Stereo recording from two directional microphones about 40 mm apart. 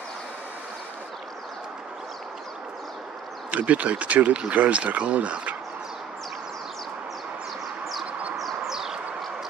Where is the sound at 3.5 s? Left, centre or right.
Right.